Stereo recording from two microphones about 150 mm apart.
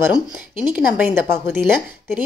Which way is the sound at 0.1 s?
10° right (ahead or behind).